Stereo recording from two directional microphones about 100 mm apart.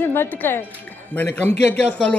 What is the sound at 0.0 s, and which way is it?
A woman's voice, 20° left (ahead or behind).